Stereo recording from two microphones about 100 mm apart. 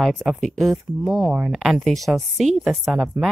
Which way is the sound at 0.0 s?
Centre (ahead or behind).